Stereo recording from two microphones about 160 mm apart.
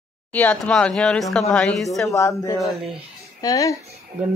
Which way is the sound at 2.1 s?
20° left (ahead or behind).